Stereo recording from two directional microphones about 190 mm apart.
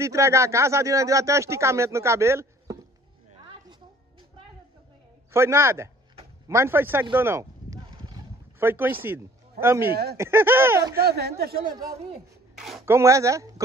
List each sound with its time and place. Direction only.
0.0 s speech: 15° right (ahead or behind)
5.3 s speech: 15° right (ahead or behind)
7.2 s a sound: 15° right (ahead or behind)
8.6 s a man's voice: 10° right (ahead or behind)
11.0 s speech: 55° right (ahead or behind)
12.5 s speech: centre (ahead or behind)
12.8 s speech: 15° right (ahead or behind)